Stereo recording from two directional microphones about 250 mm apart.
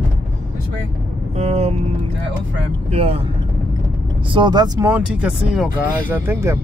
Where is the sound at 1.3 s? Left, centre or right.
Right.